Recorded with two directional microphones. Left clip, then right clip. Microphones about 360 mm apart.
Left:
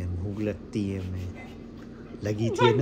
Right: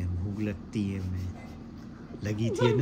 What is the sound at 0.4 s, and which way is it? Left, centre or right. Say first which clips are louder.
Speech: left 4 dB; centre.